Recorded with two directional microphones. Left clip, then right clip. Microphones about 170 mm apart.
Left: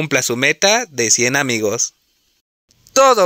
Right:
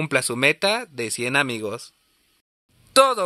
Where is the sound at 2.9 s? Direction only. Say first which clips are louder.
Left 5 dB; 40° left (ahead or behind).